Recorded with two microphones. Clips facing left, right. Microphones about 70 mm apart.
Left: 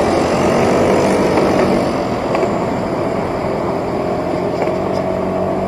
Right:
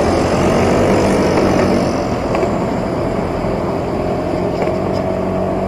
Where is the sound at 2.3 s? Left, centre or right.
Left.